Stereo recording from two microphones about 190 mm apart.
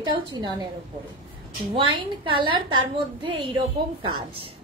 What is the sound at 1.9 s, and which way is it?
A woman's voice, 25° right (ahead or behind).